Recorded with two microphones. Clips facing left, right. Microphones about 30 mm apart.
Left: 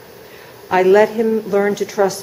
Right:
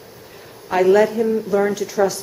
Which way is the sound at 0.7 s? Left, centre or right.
Centre.